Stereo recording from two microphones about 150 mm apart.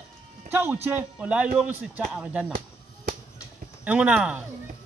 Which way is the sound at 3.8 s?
10° right (ahead or behind).